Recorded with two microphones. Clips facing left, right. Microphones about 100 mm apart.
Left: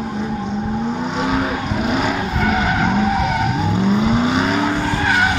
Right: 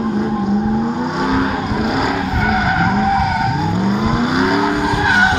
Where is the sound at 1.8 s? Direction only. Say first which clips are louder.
Right 1 dB; 5° right (ahead or behind).